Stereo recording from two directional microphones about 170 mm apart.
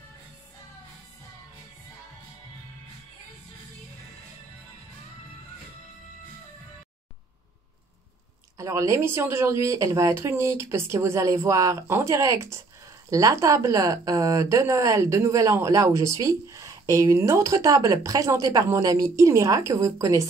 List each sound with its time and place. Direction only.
8.5 s a woman's voice: 15° right (ahead or behind)